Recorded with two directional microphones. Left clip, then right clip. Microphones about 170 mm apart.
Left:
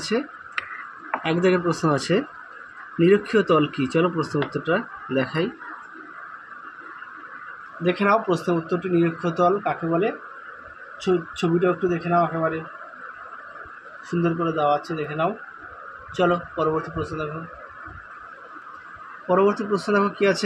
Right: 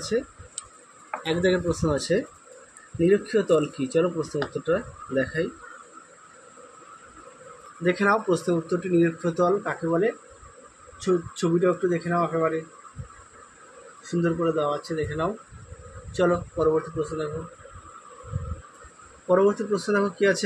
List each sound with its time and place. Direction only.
1.2 s speech: 35° left (ahead or behind)
7.8 s speech: 5° left (ahead or behind)
14.2 s speech: 5° left (ahead or behind)
19.2 s speech: 10° left (ahead or behind)